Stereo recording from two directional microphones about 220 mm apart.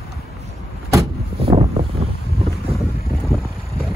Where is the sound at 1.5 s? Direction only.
25° right (ahead or behind).